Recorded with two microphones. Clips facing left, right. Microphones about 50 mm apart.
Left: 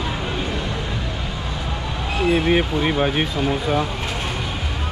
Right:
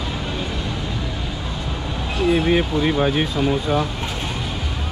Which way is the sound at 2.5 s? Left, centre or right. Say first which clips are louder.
Even; left.